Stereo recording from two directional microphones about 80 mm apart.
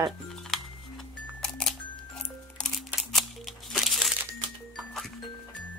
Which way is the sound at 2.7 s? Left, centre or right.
Centre.